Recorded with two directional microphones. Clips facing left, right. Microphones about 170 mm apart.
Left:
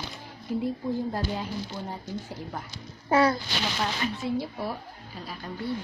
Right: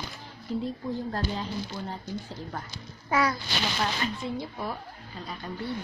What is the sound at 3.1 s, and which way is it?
Speech, 30° left (ahead or behind).